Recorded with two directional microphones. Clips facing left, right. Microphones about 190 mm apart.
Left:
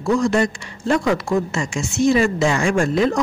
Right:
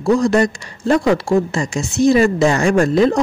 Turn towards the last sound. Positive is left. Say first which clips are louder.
# right 4 dB
turn(degrees=-35)  # may be behind; listen again after turning